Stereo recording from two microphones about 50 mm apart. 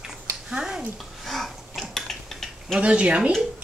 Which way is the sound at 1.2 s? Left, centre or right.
Centre.